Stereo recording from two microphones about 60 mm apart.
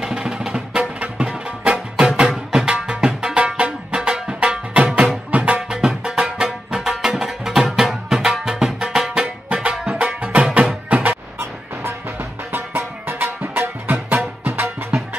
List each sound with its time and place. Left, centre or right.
0.0 s music: centre
5.6 s music: centre
9.5 s music: centre
11.3 s music: right